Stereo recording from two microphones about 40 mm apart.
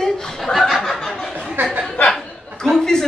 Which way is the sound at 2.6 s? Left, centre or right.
Centre.